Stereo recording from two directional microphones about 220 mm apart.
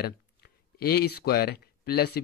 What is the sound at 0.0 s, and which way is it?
Speech, 45° left (ahead or behind).